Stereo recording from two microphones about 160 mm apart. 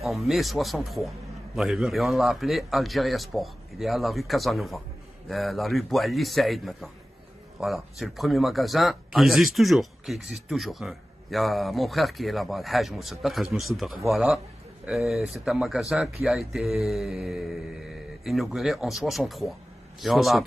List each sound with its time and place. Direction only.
0.0 s speech: centre (ahead or behind)